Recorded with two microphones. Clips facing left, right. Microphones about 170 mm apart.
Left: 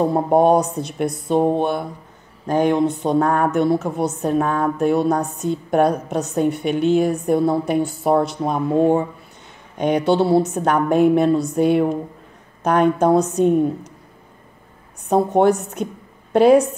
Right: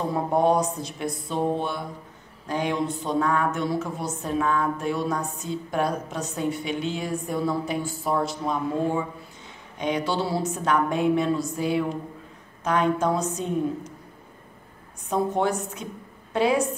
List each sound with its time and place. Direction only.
0.0 s a woman's voice: 60° left (ahead or behind)
15.0 s a woman's voice: 65° left (ahead or behind)